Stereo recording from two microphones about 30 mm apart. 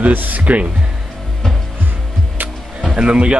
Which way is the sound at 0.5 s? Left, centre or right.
Right.